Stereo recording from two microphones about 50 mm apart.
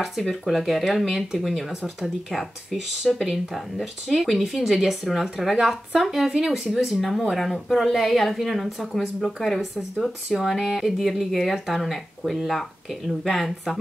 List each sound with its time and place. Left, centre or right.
0.5 s speech: centre